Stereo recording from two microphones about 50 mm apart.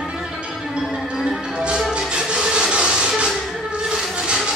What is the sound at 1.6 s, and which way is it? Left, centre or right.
Music, centre.